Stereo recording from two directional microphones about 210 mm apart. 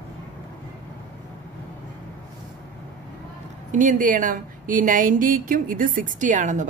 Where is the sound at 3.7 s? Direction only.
40° right (ahead or behind).